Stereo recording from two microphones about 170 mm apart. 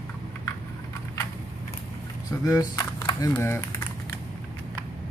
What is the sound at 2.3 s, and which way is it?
Speech, 20° left (ahead or behind).